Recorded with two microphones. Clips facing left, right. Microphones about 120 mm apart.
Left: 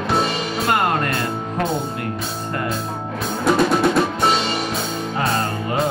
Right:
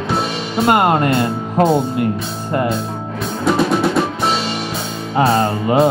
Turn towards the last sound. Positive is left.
turn(degrees=-30)  # may be behind; listen again after turning